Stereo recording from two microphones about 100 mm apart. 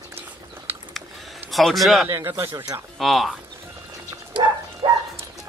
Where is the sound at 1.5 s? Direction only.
Centre (ahead or behind).